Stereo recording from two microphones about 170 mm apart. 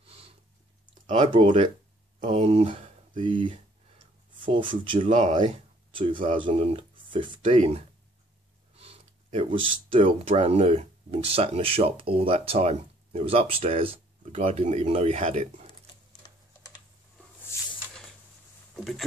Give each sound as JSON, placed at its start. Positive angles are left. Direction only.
{"t": 0.0, "sound": "a sound", "side_deg": -35}
{"t": 1.0, "sound": "speech", "side_deg": -40}
{"t": 5.0, "sound": "speech", "side_deg": -45}
{"t": 5.9, "sound": "speech", "side_deg": -30}
{"t": 18.8, "sound": "speech", "side_deg": 0}